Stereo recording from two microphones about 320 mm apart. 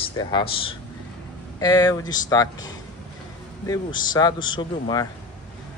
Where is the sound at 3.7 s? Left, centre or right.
Centre.